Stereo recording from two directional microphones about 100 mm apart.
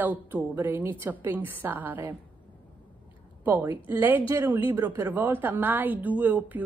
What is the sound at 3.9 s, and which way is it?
A woman's voice, 20° right (ahead or behind).